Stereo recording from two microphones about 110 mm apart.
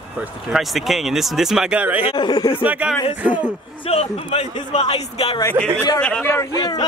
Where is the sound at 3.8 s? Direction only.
75° left (ahead or behind).